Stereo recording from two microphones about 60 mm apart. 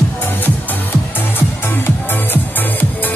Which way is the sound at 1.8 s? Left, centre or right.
Left.